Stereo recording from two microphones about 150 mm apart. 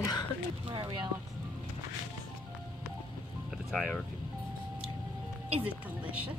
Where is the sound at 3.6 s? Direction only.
Centre (ahead or behind).